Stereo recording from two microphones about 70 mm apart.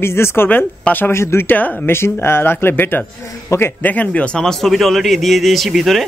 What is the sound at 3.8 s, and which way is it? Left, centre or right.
A man's voice, left.